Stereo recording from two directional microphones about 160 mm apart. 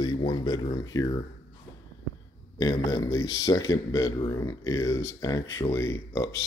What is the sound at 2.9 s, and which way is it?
Speech, 20° left (ahead or behind).